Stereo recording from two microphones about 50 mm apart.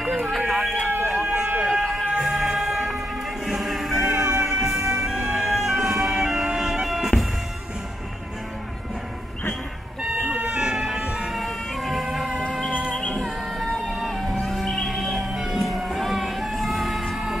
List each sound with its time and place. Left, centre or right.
0.5 s a sound: centre
0.8 s a sound: right
1.1 s a sound: centre
1.8 s music: centre
2.1 s music: centre
5.3 s emergency vehicle: centre
10.0 s chicken: right
10.5 s music: centre
11.3 s vehicle: centre
12.4 s music: centre
13.8 s music: centre